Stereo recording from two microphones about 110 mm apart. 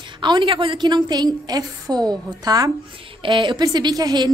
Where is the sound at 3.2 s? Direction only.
45° right (ahead or behind).